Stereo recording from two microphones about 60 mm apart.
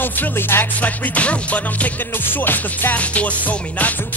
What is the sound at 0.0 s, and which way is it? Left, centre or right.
Music, left.